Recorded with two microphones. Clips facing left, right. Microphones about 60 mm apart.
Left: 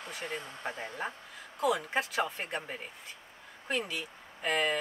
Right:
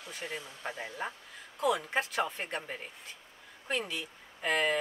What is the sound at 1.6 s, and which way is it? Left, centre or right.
Speech, centre.